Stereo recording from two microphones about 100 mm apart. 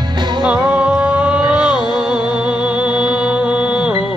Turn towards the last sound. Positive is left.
turn(degrees=-10)  # may be behind; listen again after turning